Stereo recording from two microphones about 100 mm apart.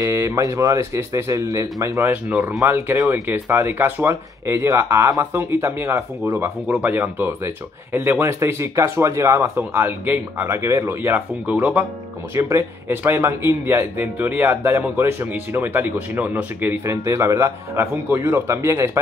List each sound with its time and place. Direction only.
0.0 s a man's voice: 30° right (ahead or behind)
2.0 s a man's voice: 15° right (ahead or behind)
12.4 s a man's voice: 25° right (ahead or behind)